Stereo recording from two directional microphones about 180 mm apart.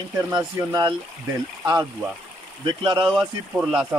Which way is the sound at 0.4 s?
10° right (ahead or behind).